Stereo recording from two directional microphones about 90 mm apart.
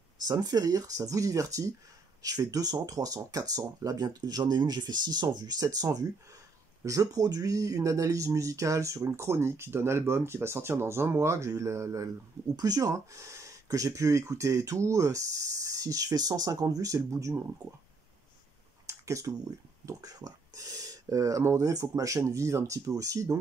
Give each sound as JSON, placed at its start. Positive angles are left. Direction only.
{"t": 0.3, "sound": "speech", "side_deg": -45}
{"t": 12.5, "sound": "speech", "side_deg": -45}
{"t": 18.9, "sound": "a sound", "side_deg": -35}
{"t": 19.9, "sound": "speech", "side_deg": -45}